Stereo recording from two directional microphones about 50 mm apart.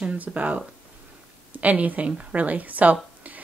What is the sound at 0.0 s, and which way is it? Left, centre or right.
Speech, right.